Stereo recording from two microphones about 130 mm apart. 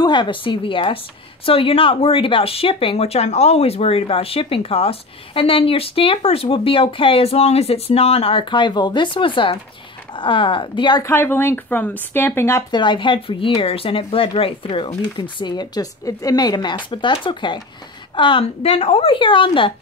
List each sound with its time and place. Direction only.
0.0 s speech: 35° left (ahead or behind)
11.1 s speech: 15° left (ahead or behind)
12.7 s speech: 35° left (ahead or behind)